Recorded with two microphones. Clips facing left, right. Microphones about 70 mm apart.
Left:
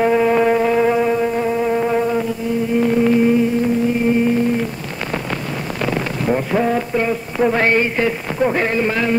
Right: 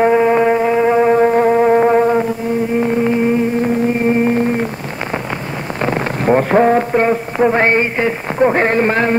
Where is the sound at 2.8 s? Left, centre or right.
Right.